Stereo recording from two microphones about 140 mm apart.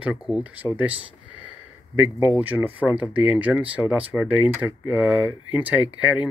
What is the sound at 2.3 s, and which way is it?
Speech, 10° right (ahead or behind).